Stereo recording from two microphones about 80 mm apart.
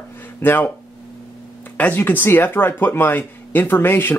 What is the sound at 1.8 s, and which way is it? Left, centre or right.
Speech, left.